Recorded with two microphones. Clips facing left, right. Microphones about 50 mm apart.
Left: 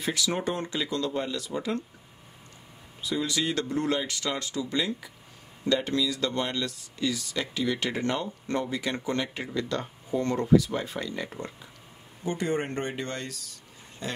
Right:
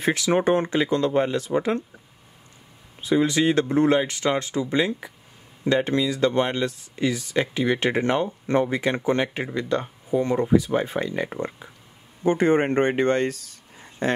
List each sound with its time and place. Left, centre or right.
0.0 s speech: right
3.0 s speech: right